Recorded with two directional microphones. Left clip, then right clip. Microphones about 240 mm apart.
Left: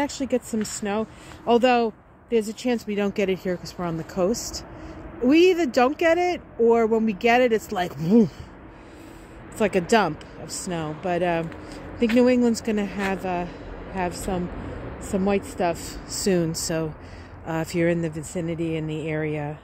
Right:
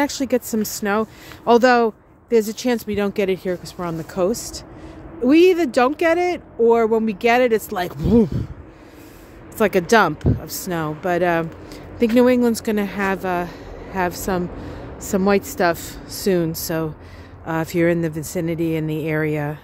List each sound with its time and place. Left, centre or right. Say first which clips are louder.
0.0 s speech: right 5 dB; centre
2.9 s speech: right 4 dB; centre
4.3 s speech: right 3 dB; right
5.2 s speech: right 4 dB; centre
9.6 s speech: right 5 dB; centre